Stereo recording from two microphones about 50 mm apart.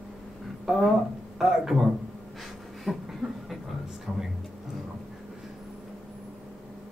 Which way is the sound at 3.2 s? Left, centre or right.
Centre.